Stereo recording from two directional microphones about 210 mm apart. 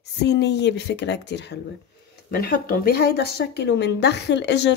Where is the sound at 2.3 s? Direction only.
45° left (ahead or behind).